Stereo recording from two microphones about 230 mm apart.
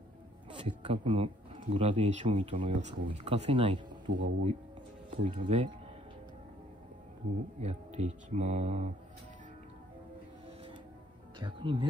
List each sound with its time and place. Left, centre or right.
0.5 s speech: right
7.6 s speech: right
11.3 s speech: right